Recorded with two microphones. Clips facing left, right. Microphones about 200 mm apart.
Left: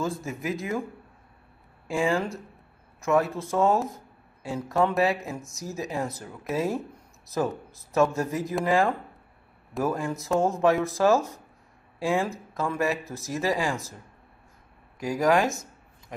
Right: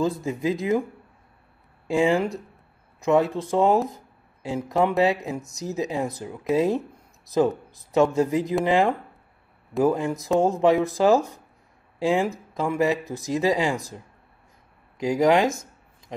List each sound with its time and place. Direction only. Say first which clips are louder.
0.0 s speech: right 6 dB; 20° right (ahead or behind)
1.9 s speech: right 5 dB; 20° right (ahead or behind)